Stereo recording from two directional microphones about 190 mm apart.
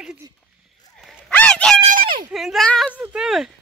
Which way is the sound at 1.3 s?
5° left (ahead or behind).